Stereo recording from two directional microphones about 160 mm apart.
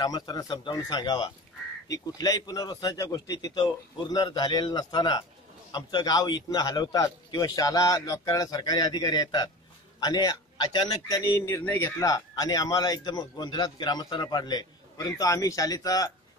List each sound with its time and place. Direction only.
0.0 s a man's voice: 25° left (ahead or behind)